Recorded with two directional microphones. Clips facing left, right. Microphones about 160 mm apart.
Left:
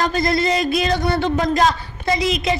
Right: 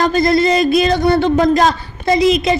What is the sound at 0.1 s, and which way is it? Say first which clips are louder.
Speech: right 6 dB; 30° right (ahead or behind).